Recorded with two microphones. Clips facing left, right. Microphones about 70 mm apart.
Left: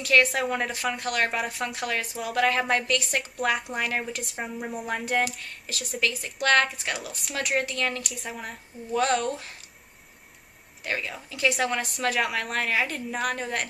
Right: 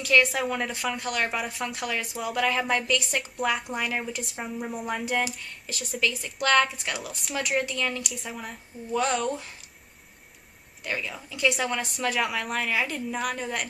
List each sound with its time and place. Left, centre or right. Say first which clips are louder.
0.0 s a woman's voice: even; centre
9.2 s speech: right 1 dB; centre
10.8 s a woman's voice: left 1 dB; centre